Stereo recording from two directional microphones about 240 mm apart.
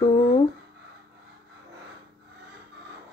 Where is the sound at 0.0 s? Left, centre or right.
Left.